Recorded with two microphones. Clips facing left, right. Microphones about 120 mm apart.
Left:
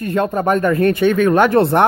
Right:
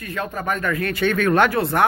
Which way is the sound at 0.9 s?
20° left (ahead or behind).